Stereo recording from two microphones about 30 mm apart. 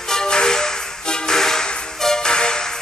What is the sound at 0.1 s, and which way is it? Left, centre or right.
Music, left.